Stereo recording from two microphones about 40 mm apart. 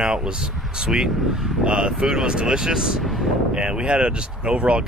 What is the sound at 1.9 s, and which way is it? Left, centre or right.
Speech, centre.